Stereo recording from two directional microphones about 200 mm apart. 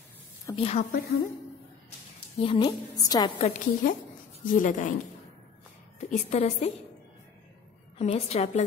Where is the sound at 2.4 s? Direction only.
25° left (ahead or behind).